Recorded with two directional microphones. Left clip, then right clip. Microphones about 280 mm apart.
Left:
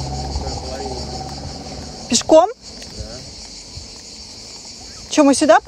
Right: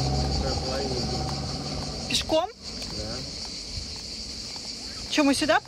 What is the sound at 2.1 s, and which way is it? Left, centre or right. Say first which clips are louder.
Speech: left 13 dB; centre.